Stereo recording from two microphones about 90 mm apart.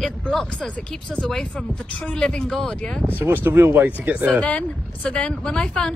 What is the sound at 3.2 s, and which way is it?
Speech, 25° right (ahead or behind).